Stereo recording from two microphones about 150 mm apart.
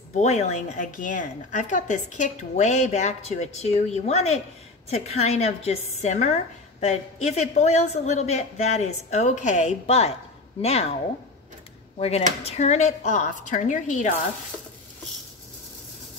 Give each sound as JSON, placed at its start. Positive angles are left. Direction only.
{"t": 0.1, "sound": "a woman's voice", "side_deg": 50}
{"t": 12.4, "sound": "a woman's voice", "side_deg": 50}